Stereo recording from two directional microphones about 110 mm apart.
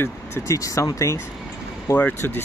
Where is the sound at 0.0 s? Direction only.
30° left (ahead or behind).